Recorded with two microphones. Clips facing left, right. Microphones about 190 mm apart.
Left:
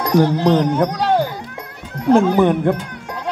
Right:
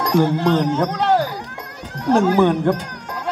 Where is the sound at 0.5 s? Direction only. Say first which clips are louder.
Left 2 dB; 15° left (ahead or behind).